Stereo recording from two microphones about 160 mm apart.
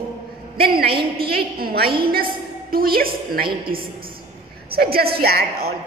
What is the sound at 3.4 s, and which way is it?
Speech, 30° right (ahead or behind).